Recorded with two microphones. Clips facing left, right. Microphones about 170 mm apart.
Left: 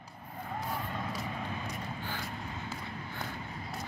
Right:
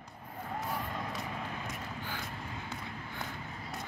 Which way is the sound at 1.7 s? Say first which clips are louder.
Left 2 dB; centre (ahead or behind).